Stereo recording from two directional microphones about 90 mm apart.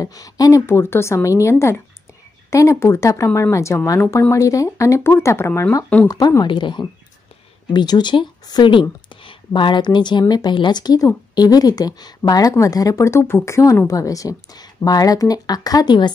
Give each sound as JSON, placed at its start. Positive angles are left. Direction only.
{"t": 0.0, "sound": "a woman's voice", "side_deg": 40}
{"t": 6.0, "sound": "speech", "side_deg": 45}
{"t": 6.4, "sound": "speech", "side_deg": 60}